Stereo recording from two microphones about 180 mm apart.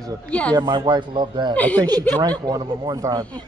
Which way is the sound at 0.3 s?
5° left (ahead or behind).